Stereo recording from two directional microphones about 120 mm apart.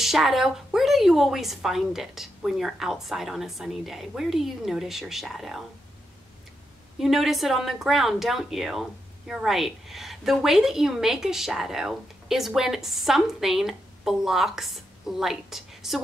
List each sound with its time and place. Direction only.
0.0 s a woman's voice: centre (ahead or behind)
7.0 s a woman's voice: centre (ahead or behind)